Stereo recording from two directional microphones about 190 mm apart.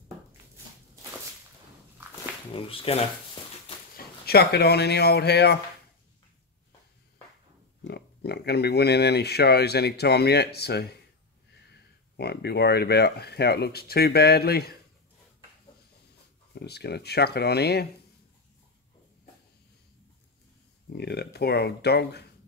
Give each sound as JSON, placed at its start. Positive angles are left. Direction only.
{"t": 2.5, "sound": "speech", "side_deg": 30}
{"t": 3.9, "sound": "speech", "side_deg": 55}
{"t": 7.8, "sound": "speech", "side_deg": 60}
{"t": 16.5, "sound": "speech", "side_deg": 60}
{"t": 21.0, "sound": "speech", "side_deg": 60}